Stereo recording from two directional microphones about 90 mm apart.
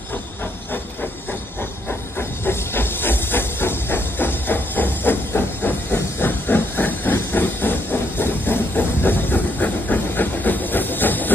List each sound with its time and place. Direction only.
1.6 s hiss: 25° left (ahead or behind)